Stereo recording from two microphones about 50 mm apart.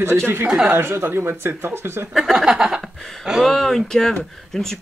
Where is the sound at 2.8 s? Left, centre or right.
Centre.